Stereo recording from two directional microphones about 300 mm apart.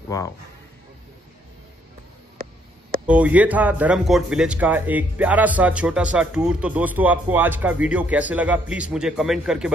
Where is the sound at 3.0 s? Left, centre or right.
Centre.